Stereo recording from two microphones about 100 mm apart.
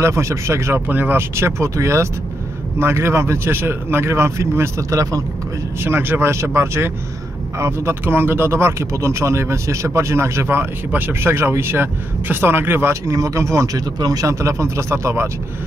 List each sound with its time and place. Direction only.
0.0 s speech: 30° right (ahead or behind)
13.1 s speech: 35° right (ahead or behind)